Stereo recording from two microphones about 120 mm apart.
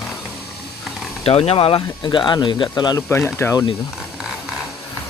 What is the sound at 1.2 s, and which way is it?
Speech, 55° left (ahead or behind).